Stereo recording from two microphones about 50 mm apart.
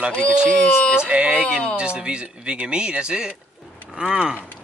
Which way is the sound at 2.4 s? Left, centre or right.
Right.